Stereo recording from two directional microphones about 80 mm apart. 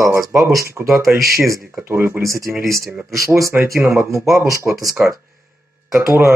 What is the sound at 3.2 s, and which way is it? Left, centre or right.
Speech, right.